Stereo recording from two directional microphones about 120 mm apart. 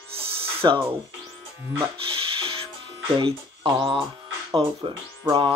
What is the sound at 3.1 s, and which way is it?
Speech, 45° right (ahead or behind).